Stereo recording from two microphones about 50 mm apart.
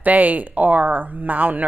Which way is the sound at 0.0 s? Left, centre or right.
Right.